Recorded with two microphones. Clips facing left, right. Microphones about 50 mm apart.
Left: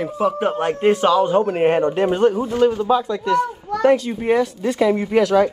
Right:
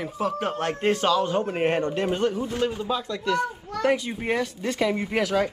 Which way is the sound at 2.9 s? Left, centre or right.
Centre.